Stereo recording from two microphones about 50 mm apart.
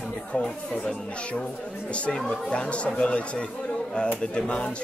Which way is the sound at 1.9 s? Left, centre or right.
Left.